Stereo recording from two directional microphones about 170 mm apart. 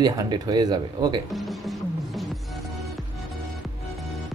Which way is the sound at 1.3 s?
Centre (ahead or behind).